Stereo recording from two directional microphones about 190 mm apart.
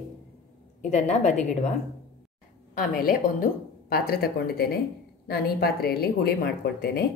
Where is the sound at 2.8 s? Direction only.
50° left (ahead or behind).